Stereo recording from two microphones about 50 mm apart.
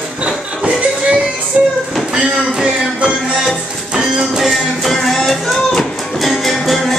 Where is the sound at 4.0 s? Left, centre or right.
Centre.